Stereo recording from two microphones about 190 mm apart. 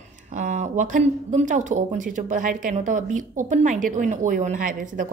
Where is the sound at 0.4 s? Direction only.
40° right (ahead or behind).